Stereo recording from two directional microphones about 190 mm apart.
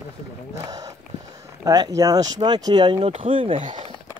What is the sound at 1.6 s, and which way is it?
Speech, 20° right (ahead or behind).